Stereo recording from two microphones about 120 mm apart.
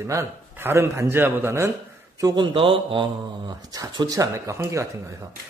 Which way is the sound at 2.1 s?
35° right (ahead or behind).